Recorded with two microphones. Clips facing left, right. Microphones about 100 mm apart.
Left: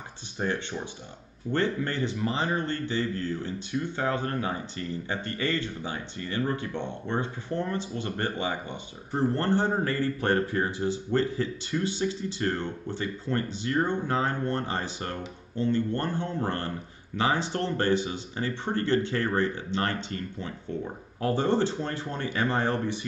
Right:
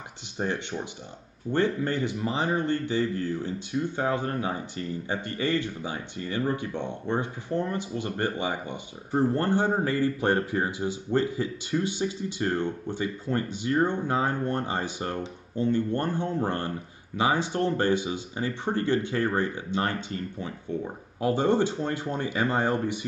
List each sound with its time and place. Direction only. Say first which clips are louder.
0.4 s speech: even; 15° right (ahead or behind)